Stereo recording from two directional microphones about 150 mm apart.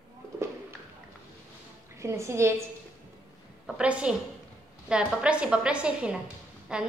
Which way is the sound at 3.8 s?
5° right (ahead or behind).